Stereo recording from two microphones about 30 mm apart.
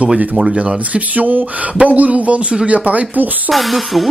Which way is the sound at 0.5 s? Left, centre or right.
Right.